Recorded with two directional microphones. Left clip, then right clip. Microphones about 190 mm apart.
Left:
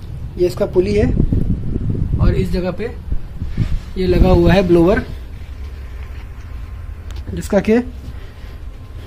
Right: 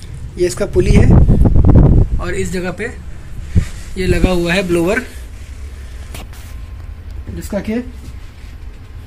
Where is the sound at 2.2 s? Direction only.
Centre (ahead or behind).